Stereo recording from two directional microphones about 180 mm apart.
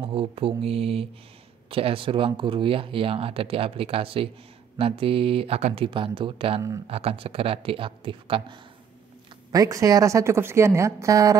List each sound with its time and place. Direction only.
0.0 s a woman's voice: 30° right (ahead or behind)